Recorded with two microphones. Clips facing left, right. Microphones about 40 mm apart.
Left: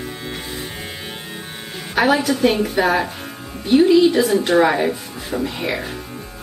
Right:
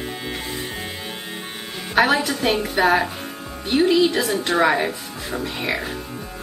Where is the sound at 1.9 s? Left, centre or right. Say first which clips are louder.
Left 1 dB; centre.